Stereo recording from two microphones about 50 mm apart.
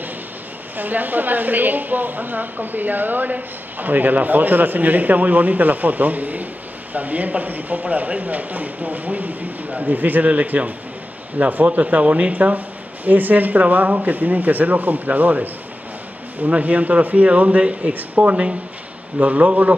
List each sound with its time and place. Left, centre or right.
0.7 s a woman's voice: right